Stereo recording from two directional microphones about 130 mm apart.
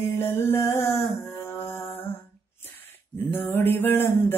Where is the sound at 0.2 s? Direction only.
20° left (ahead or behind).